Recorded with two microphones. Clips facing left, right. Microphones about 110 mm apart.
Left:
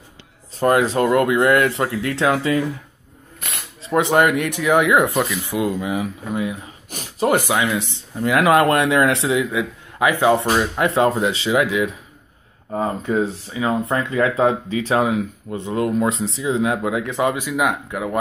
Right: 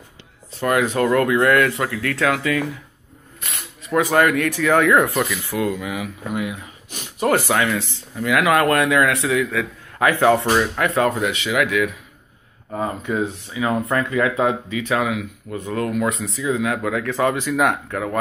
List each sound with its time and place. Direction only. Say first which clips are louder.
0.6 s speech: left 2 dB; 30° left (ahead or behind)
3.8 s speech: left 1 dB; 25° left (ahead or behind)
7.2 s speech: even; 15° left (ahead or behind)
8.2 s speech: left 2 dB; 30° left (ahead or behind)
13.7 s speech: even; 20° left (ahead or behind)